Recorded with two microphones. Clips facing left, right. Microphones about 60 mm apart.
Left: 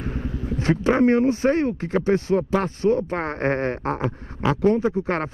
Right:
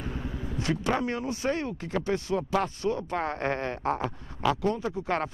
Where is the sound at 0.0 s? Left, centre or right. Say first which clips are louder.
Left 6 dB; left.